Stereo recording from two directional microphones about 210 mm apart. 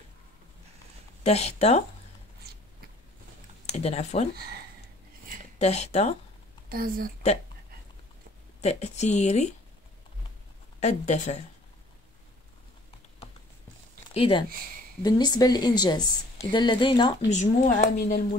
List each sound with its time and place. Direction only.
1.2 s a woman's voice: 30° left (ahead or behind)
3.6 s speech: 30° left (ahead or behind)
5.6 s speech: 30° left (ahead or behind)
6.7 s a woman's voice: 45° right (ahead or behind)
8.5 s speech: 30° left (ahead or behind)
10.8 s speech: 35° left (ahead or behind)
14.1 s a woman's voice: 25° left (ahead or behind)
17.4 s speech: 40° left (ahead or behind)